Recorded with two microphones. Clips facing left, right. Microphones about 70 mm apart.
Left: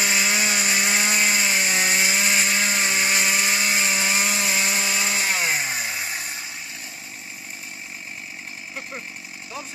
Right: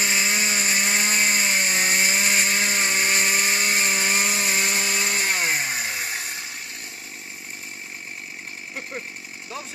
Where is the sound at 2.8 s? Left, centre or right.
Right.